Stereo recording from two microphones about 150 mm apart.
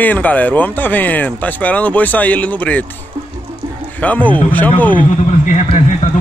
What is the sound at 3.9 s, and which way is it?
Speech, 10° left (ahead or behind).